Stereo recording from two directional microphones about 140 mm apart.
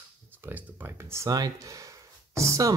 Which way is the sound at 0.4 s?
15° right (ahead or behind).